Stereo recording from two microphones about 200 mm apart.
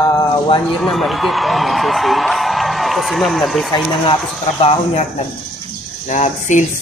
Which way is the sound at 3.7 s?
25° left (ahead or behind).